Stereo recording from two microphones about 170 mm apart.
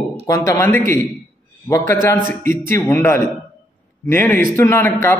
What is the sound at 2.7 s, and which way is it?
A man's voice, 15° left (ahead or behind).